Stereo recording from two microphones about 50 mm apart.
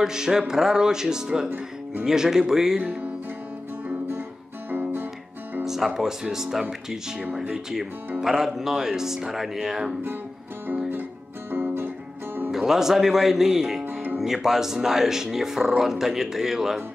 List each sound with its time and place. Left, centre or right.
0.0 s speech: centre
2.8 s music: right
4.6 s music: right
5.6 s speech: centre
8.2 s speech: centre
11.5 s music: right
12.4 s speech: centre